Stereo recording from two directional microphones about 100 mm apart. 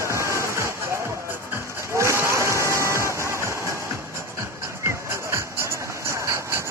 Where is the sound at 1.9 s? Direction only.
30° right (ahead or behind).